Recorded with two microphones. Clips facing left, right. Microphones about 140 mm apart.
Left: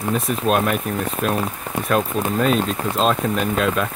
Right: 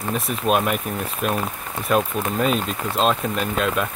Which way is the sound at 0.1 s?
Centre (ahead or behind).